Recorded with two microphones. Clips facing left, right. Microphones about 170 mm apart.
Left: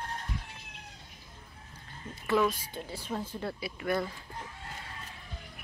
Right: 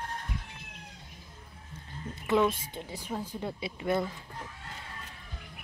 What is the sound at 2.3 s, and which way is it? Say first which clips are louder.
Speech: right 1 dB; 25° right (ahead or behind).